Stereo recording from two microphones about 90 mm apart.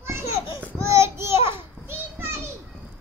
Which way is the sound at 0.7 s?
35° right (ahead or behind).